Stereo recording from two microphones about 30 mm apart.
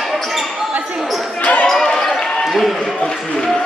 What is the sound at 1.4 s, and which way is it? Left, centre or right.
Basketball bounce, left.